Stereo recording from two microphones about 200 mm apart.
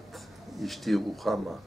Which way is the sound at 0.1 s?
Centre (ahead or behind).